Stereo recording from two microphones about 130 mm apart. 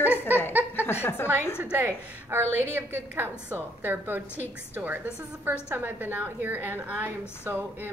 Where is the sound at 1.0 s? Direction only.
15° left (ahead or behind).